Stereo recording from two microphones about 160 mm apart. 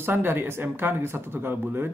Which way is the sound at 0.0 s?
15° right (ahead or behind).